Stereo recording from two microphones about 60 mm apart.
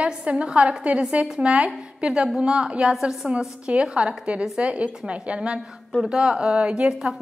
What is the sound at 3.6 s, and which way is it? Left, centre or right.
A woman's voice, centre.